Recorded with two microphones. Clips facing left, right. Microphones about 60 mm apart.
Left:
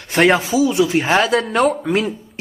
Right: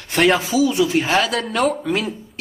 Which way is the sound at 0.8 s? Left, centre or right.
Left.